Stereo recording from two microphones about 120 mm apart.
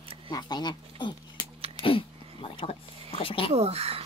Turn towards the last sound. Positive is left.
turn(degrees=-60)  # may be behind; listen again after turning